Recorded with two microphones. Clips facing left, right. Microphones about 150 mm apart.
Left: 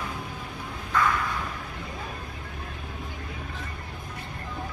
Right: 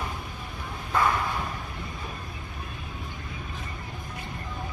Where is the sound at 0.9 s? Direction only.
25° right (ahead or behind).